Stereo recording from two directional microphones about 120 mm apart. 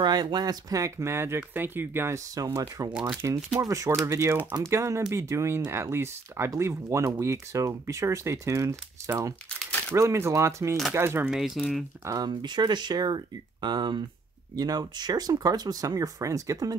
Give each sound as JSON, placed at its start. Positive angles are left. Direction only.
{"t": 0.0, "sound": "speech", "side_deg": -35}
{"t": 2.9, "sound": "speech", "side_deg": -5}
{"t": 3.6, "sound": "speech", "side_deg": -25}
{"t": 11.2, "sound": "speech", "side_deg": -5}
{"t": 12.1, "sound": "speech", "side_deg": -35}